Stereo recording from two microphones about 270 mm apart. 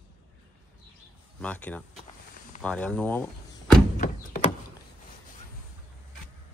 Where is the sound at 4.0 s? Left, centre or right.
Left.